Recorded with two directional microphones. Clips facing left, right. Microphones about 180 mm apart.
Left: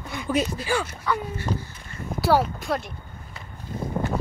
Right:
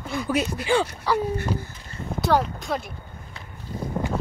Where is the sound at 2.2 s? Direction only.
5° left (ahead or behind).